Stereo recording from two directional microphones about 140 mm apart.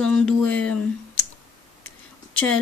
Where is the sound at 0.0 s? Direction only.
10° left (ahead or behind).